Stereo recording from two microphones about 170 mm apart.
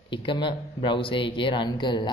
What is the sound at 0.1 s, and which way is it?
Speech, 25° left (ahead or behind).